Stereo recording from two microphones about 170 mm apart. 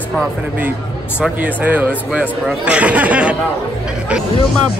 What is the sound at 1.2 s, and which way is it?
Speech, 10° right (ahead or behind).